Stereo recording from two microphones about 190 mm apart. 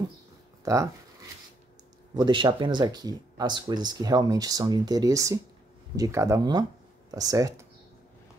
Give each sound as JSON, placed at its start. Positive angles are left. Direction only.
{"t": 0.7, "sound": "speech", "side_deg": -15}
{"t": 2.1, "sound": "speech", "side_deg": -25}